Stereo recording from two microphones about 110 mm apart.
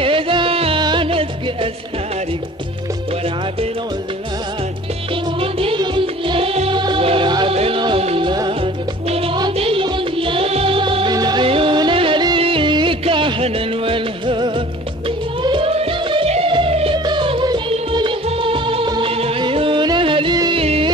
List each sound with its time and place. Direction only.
0.0 s music: 50° right (ahead or behind)
5.4 s music: 60° right (ahead or behind)
6.7 s music: 45° right (ahead or behind)
7.5 s music: 60° right (ahead or behind)
8.2 s music: 45° right (ahead or behind)
9.1 s music: 60° right (ahead or behind)
11.1 s music: 40° right (ahead or behind)
11.4 s music: 55° right (ahead or behind)
13.0 s music: 60° right (ahead or behind)
17.0 s music: 45° right (ahead or behind)
20.5 s music: 65° right (ahead or behind)